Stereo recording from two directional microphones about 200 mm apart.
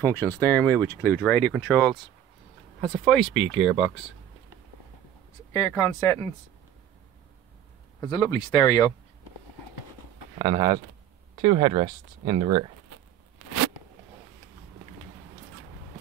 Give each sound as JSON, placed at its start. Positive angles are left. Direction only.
{"t": 0.0, "sound": "speech", "side_deg": 10}
{"t": 3.1, "sound": "speech", "side_deg": 0}
{"t": 5.5, "sound": "speech", "side_deg": 15}
{"t": 8.1, "sound": "speech", "side_deg": 20}
{"t": 10.4, "sound": "speech", "side_deg": -20}